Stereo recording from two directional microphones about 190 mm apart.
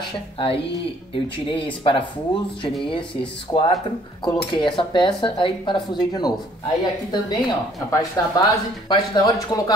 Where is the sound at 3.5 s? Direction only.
25° left (ahead or behind).